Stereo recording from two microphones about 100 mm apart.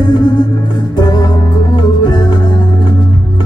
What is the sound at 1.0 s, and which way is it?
Music, 45° left (ahead or behind).